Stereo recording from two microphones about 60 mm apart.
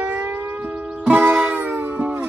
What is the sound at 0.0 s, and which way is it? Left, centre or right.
Music, right.